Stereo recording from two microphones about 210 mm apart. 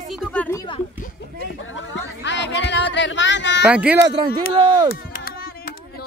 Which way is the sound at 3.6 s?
5° right (ahead or behind).